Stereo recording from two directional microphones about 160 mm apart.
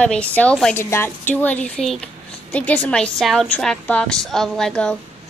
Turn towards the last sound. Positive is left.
turn(degrees=5)  # may be behind; listen again after turning